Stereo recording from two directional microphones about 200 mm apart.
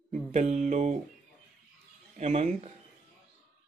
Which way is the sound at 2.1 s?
35° right (ahead or behind).